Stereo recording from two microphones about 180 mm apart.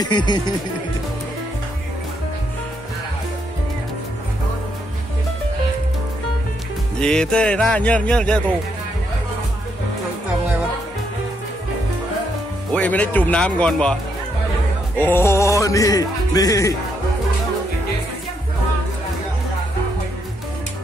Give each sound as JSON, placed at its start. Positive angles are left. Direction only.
{"t": 0.0, "sound": "speech", "side_deg": 25}
{"t": 7.0, "sound": "music", "side_deg": 5}
{"t": 12.7, "sound": "speech", "side_deg": 10}
{"t": 15.0, "sound": "speech", "side_deg": 10}